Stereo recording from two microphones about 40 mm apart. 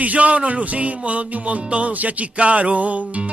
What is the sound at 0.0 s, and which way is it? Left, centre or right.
Music, right.